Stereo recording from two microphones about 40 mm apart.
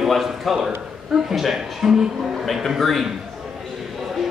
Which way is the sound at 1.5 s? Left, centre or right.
Centre.